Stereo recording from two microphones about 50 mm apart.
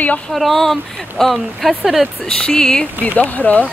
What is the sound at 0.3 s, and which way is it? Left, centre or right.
Speech, centre.